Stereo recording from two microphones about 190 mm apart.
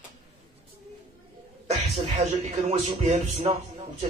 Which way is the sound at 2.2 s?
35° right (ahead or behind).